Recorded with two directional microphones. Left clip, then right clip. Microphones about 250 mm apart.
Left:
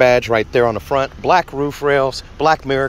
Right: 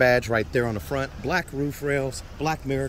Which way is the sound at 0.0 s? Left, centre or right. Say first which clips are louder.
Left 8 dB; centre.